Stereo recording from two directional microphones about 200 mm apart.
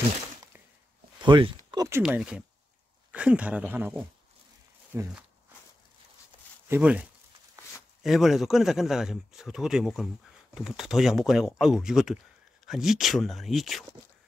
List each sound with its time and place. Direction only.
1.2 s speech: 25° right (ahead or behind)
2.0 s a man's voice: 5° right (ahead or behind)
6.7 s a man's voice: 5° right (ahead or behind)